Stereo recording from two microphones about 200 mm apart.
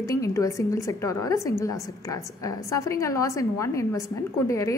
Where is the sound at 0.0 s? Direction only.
15° left (ahead or behind).